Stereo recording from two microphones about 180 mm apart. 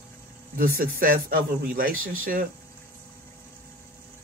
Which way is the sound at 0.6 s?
55° right (ahead or behind).